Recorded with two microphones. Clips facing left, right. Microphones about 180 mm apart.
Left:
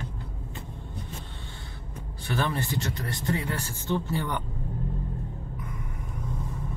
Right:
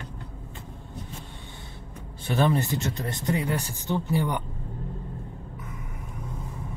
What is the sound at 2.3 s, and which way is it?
Speech, 20° right (ahead or behind).